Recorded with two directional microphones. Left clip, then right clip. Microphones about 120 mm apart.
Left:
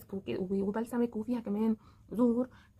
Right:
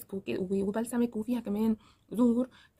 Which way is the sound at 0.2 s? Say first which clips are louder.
Right 2 dB; 30° right (ahead or behind).